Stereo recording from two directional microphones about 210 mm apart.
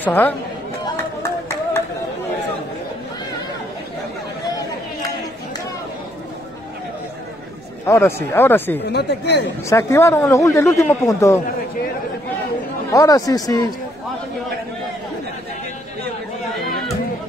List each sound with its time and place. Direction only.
0.0 s speech: 10° left (ahead or behind)
1.2 s a sound: 10° left (ahead or behind)
7.8 s speech: 10° left (ahead or behind)
8.9 s speech: 55° left (ahead or behind)
9.7 s speech: 15° left (ahead or behind)
12.9 s speech: 15° left (ahead or behind)